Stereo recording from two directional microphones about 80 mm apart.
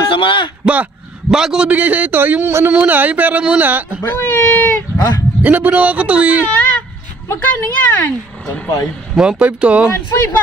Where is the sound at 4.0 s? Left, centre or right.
Left.